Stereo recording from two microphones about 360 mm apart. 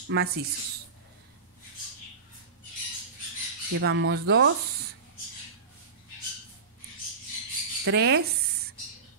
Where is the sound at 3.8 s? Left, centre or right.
Right.